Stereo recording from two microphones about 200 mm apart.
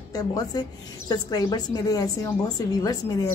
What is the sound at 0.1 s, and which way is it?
A woman's voice, 20° left (ahead or behind).